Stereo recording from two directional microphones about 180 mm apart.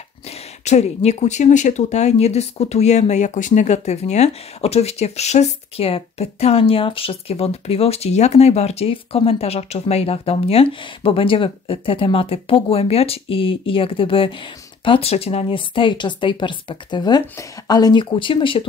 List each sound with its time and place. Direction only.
0.7 s speech: 40° left (ahead or behind)